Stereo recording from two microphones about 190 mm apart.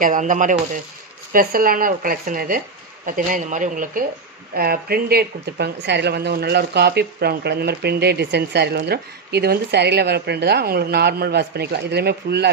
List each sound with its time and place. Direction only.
0.0 s speech: 40° right (ahead or behind); by 12.4 s 60° right (ahead or behind)